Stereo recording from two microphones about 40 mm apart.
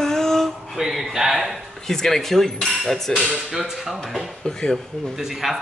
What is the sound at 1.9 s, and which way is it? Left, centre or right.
Speech, centre.